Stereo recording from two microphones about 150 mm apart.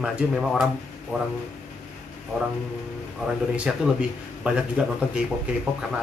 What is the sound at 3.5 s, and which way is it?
A man's voice, 5° right (ahead or behind).